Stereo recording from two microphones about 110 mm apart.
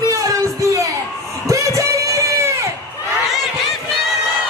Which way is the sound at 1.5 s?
30° right (ahead or behind).